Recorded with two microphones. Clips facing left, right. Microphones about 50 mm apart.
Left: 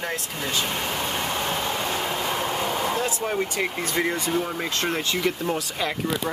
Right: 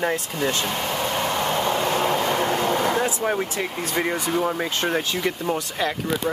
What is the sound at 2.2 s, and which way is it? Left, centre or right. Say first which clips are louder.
Vehicle: right 4 dB; right.